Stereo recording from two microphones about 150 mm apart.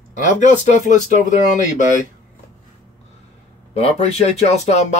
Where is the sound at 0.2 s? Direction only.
55° left (ahead or behind).